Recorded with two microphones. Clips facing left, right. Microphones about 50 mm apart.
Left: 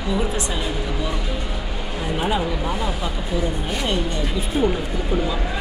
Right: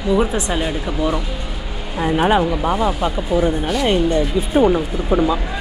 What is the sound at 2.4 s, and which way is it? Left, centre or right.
Speech, right.